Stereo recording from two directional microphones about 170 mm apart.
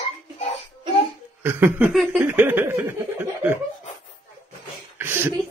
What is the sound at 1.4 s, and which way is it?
Speech, 15° right (ahead or behind).